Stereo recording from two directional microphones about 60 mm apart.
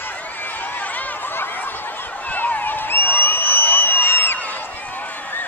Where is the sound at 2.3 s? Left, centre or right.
Left.